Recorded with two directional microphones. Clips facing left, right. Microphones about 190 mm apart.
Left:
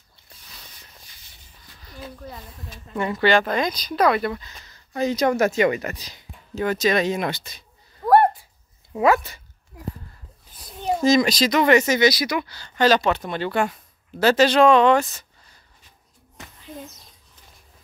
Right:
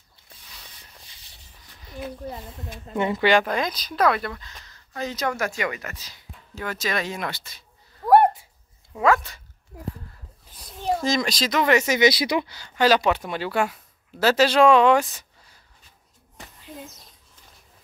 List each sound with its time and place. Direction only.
1.9 s speech: 25° right (ahead or behind); by 4.3 s centre (ahead or behind)
4.3 s speech: 10° left (ahead or behind)
10.8 s speech: centre (ahead or behind)
12.0 s speech: 25° right (ahead or behind)
12.5 s speech: 10° right (ahead or behind)